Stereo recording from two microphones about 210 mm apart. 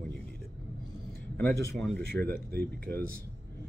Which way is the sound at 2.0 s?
45° right (ahead or behind).